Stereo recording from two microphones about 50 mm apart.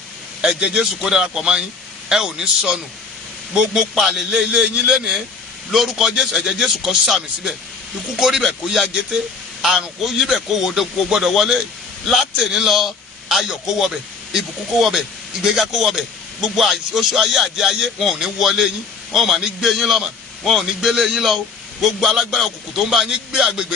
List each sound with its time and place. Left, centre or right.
0.4 s a man's voice: centre
7.1 s a man's voice: centre
23.0 s a man's voice: centre